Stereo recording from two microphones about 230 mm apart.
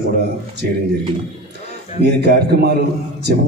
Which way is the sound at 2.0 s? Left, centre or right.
Right.